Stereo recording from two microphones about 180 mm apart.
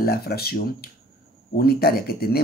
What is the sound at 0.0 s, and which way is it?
Speech, 60° left (ahead or behind).